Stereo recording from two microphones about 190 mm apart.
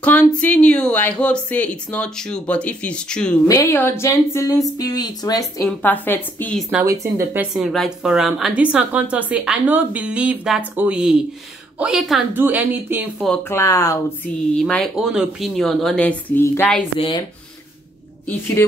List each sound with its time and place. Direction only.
0.0 s a woman's voice: 5° left (ahead or behind)
6.7 s speech: 15° right (ahead or behind)
7.3 s a woman's voice: centre (ahead or behind)
13.2 s speech: 10° left (ahead or behind)
14.5 s a woman's voice: 5° left (ahead or behind)